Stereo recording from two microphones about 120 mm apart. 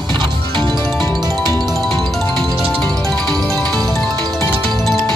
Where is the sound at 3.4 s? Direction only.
30° right (ahead or behind).